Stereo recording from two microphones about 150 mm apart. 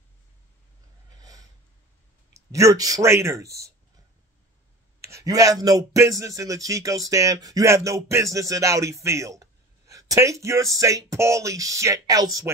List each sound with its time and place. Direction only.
1.1 s snort: 25° right (ahead or behind)
2.3 s speech: 20° right (ahead or behind)
5.0 s speech: 20° right (ahead or behind)